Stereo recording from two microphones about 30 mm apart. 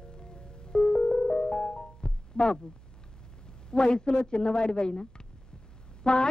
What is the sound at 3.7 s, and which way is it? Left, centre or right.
A man's voice, left.